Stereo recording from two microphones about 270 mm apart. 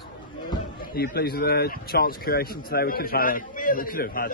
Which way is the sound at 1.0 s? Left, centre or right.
Left.